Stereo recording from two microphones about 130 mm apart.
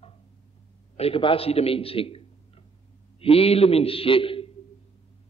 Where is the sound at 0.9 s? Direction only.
45° left (ahead or behind).